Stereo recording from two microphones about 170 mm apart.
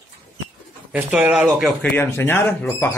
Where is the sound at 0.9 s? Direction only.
10° right (ahead or behind).